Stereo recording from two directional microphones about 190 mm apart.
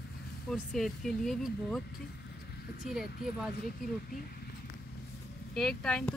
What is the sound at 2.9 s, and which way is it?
Speech, 5° right (ahead or behind).